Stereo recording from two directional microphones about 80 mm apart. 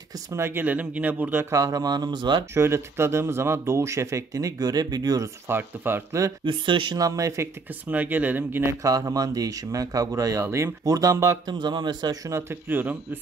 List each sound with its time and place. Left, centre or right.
0.3 s speech: right
1.4 s speech: right
2.5 s speech: right
5.2 s speech: right
6.4 s speech: right
7.0 s speech: right
7.9 s speech: right
8.8 s speech: right
11.4 s speech: right
12.3 s speech: right